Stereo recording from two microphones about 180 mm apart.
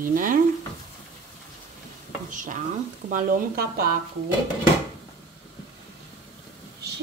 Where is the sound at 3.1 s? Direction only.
50° right (ahead or behind).